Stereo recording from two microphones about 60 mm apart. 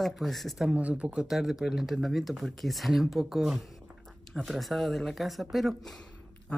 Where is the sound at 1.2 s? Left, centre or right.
Centre.